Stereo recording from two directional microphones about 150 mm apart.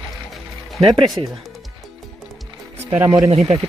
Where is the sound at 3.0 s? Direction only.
25° right (ahead or behind).